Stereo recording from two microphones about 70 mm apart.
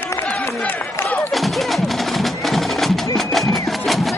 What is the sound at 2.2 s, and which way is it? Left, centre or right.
Music, centre.